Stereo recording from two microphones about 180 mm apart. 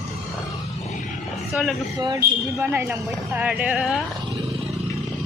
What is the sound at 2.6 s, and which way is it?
Speech, 15° right (ahead or behind).